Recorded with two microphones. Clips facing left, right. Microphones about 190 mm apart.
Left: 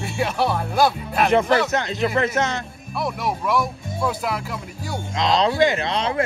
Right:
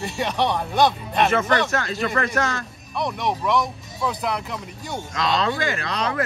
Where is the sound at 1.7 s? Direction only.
20° left (ahead or behind).